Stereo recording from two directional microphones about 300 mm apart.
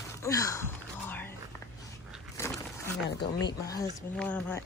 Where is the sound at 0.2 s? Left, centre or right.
Centre.